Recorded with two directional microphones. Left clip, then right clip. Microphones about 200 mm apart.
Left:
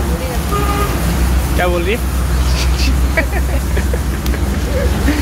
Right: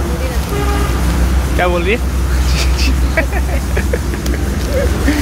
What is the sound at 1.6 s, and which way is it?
Speech, 15° right (ahead or behind).